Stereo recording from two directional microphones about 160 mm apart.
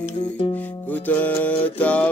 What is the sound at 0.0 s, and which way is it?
Music, 40° left (ahead or behind).